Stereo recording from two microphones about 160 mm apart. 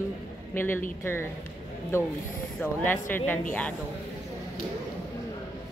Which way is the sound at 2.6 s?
10° left (ahead or behind).